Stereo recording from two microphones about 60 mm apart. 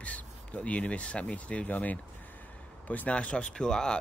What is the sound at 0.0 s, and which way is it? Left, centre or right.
Speech, left.